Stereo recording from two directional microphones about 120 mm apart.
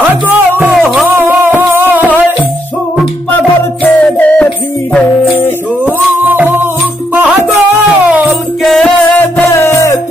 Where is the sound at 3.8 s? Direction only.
10° left (ahead or behind).